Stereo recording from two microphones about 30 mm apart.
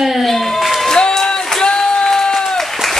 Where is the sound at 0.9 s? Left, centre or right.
Centre.